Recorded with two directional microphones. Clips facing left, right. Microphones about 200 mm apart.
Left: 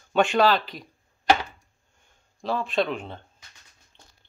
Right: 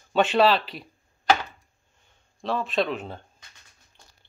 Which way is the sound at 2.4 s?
Centre (ahead or behind).